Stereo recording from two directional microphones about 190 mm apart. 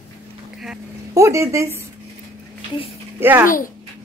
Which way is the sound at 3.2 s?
10° right (ahead or behind).